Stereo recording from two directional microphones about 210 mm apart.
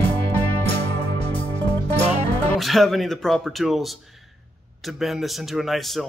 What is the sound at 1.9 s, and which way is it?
Music, 30° right (ahead or behind).